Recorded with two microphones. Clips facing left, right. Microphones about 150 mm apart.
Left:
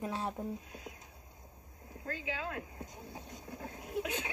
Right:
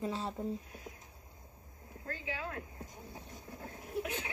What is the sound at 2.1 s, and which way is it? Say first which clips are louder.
Speech: left 2 dB; 20° left (ahead or behind).